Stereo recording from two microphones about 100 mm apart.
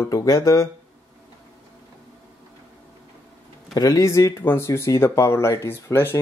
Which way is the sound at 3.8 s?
35° left (ahead or behind).